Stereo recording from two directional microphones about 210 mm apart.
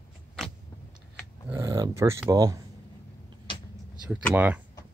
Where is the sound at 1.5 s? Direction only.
15° right (ahead or behind).